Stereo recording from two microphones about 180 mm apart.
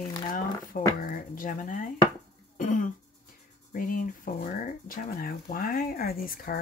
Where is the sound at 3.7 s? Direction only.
50° left (ahead or behind).